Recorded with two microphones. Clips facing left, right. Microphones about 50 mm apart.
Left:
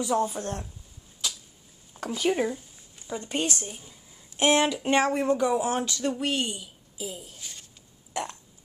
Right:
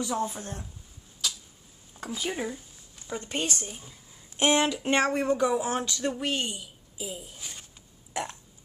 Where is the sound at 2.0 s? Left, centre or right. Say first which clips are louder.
Left 4 dB; left.